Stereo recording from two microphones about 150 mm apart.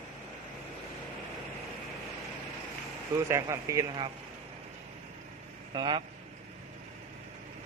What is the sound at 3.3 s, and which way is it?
Speech, 20° right (ahead or behind).